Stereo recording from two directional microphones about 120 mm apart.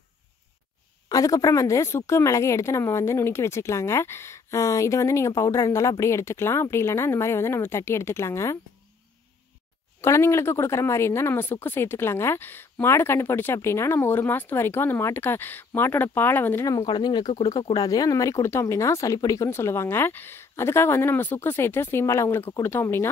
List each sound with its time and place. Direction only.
1.0 s a woman's voice: 30° left (ahead or behind)
10.0 s a woman's voice: 25° left (ahead or behind)
16.8 s a woman's voice: 35° left (ahead or behind); by 23.0 s 20° left (ahead or behind)